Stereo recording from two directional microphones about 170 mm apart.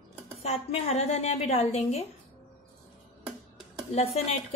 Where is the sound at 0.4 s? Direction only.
40° left (ahead or behind).